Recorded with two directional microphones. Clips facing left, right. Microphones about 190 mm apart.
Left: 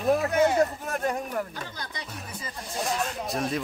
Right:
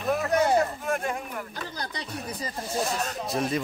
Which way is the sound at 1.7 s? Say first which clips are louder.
Right 4 dB; 35° right (ahead or behind).